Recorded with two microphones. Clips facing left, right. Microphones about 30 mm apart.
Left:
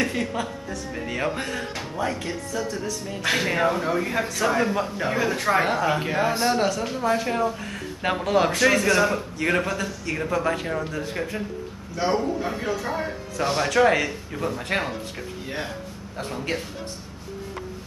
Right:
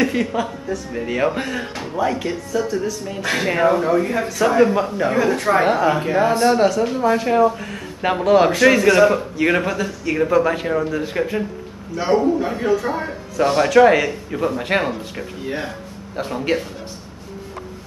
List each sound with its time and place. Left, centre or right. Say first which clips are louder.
0.0 s a man's voice: right 6 dB; centre